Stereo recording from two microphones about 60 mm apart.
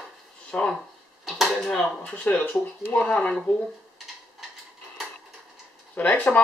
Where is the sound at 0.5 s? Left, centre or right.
Centre.